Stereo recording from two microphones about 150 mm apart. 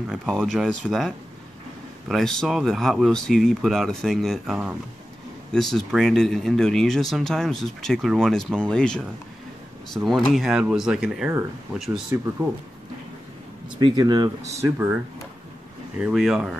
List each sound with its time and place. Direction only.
0.4 s speech: centre (ahead or behind)
13.7 s speech: 25° right (ahead or behind)
16.0 s speech: centre (ahead or behind)